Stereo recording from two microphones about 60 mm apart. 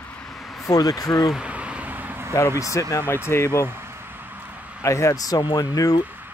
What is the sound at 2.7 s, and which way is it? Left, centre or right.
Speech, left.